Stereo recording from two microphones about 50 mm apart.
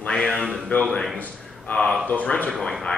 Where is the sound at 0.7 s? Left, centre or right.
Left.